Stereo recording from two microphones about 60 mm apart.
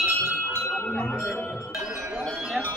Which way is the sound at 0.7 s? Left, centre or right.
Centre.